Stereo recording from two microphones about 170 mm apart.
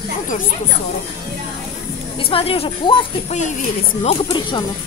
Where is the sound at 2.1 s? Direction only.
35° left (ahead or behind).